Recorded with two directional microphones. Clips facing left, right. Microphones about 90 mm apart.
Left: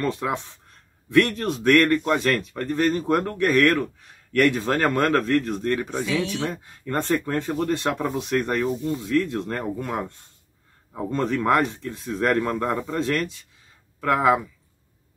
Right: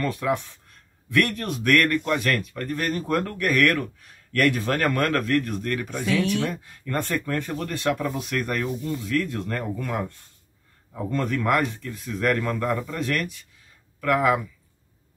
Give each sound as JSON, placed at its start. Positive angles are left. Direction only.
{"t": 0.0, "sound": "speech", "side_deg": 25}